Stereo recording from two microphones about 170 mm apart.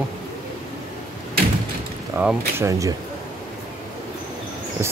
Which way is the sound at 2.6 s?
20° right (ahead or behind).